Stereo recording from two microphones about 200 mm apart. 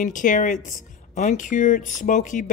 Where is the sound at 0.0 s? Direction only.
40° left (ahead or behind).